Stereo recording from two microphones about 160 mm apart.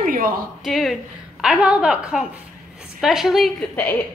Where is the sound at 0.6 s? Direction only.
Centre (ahead or behind).